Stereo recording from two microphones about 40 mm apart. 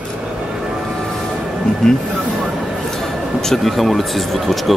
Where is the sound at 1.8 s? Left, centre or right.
Centre.